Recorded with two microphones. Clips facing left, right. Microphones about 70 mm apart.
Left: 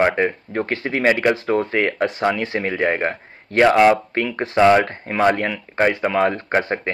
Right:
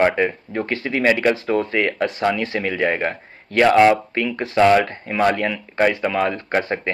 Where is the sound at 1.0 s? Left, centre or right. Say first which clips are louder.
Even; left.